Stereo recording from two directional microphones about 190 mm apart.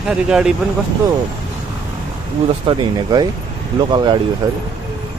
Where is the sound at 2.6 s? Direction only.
20° right (ahead or behind).